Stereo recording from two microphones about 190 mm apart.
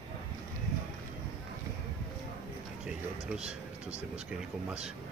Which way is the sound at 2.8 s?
5° right (ahead or behind).